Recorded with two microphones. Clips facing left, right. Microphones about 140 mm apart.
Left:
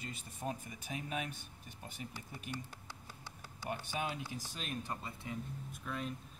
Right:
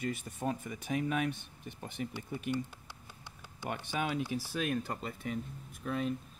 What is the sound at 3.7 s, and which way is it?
Speech, 65° right (ahead or behind).